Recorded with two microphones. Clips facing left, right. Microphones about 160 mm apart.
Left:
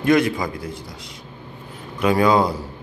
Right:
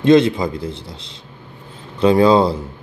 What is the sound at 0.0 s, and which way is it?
Speech, 25° right (ahead or behind).